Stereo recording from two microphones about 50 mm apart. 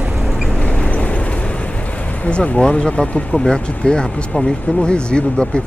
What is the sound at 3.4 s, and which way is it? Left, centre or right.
Speech, centre.